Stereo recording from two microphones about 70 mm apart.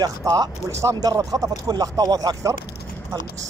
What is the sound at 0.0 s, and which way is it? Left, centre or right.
Speech, right.